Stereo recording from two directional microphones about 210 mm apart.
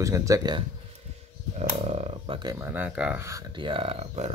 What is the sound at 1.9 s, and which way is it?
Speech, 25° right (ahead or behind).